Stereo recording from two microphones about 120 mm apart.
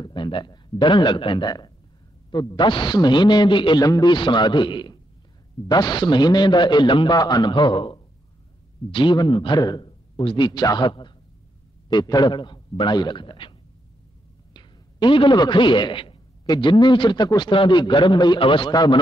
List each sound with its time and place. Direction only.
0.0 s a man's voice: 40° left (ahead or behind)